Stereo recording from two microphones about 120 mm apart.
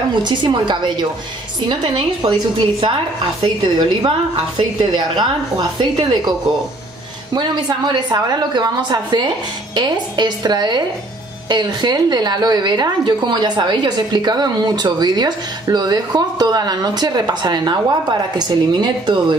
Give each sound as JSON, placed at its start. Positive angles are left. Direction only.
{"t": 0.2, "sound": "a woman's voice", "side_deg": -40}
{"t": 7.3, "sound": "a woman's voice", "side_deg": -35}